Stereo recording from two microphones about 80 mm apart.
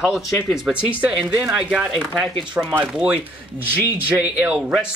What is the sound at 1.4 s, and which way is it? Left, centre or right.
Speech, centre.